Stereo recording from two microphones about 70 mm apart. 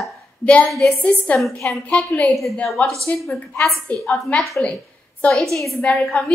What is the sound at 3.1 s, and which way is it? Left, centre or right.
Speech, left.